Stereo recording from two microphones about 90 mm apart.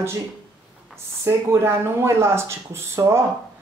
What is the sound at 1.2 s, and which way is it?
Speech, 30° right (ahead or behind).